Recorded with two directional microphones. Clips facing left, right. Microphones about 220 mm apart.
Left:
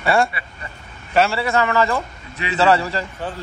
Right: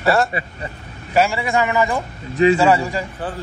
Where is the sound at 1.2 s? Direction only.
15° right (ahead or behind).